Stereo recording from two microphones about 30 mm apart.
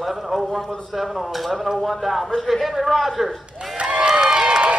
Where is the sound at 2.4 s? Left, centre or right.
Centre.